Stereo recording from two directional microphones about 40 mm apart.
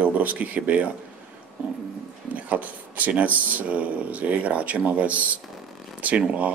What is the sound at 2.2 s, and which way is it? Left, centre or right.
Speech, right.